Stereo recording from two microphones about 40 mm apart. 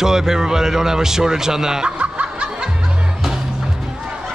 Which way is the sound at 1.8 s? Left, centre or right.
Right.